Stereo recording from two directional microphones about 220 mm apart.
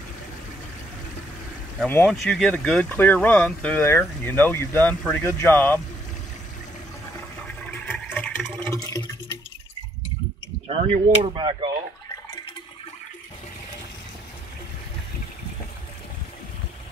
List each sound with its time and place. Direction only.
1.8 s speech: 5° left (ahead or behind)
7.8 s water: 5° left (ahead or behind)
11.2 s speech: 20° right (ahead or behind)